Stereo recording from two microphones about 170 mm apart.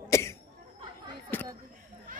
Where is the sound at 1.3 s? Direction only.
10° left (ahead or behind).